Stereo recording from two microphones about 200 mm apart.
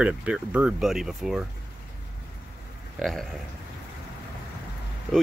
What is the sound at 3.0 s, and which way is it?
Speech, centre (ahead or behind).